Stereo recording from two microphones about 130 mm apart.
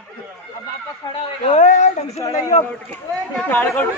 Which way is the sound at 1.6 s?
70° left (ahead or behind).